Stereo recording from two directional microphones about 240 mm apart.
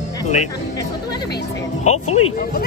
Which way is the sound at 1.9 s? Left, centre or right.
Left.